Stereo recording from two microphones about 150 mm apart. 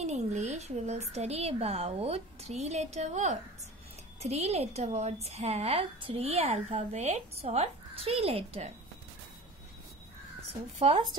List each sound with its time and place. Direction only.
0.0 s a woman's voice: 50° right (ahead or behind)
10.8 s speech: 35° right (ahead or behind)